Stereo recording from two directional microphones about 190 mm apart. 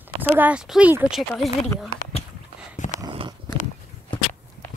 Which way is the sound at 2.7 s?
40° left (ahead or behind).